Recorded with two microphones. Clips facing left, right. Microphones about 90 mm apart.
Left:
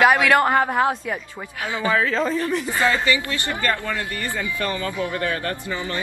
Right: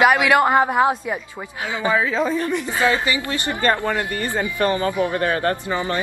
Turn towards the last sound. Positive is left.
turn(degrees=-40)  # may be behind; listen again after turning